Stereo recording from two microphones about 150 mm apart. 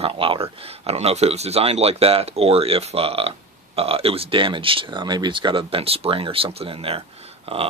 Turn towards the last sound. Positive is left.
turn(degrees=-40)  # may be behind; listen again after turning